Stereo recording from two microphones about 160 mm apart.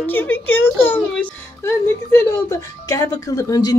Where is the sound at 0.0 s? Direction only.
10° left (ahead or behind).